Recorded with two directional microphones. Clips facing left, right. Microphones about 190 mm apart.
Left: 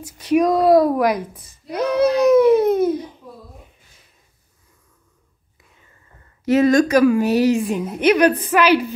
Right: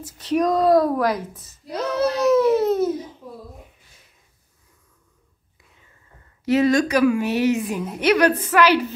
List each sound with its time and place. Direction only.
0.0 s a woman's voice: 10° left (ahead or behind)
6.4 s a woman's voice: 50° left (ahead or behind); by 7.8 s 35° left (ahead or behind)
8.0 s speech: 20° left (ahead or behind)